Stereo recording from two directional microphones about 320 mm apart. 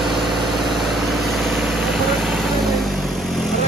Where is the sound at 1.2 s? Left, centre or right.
Centre.